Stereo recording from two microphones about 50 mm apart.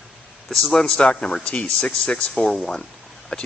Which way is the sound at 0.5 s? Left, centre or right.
Centre.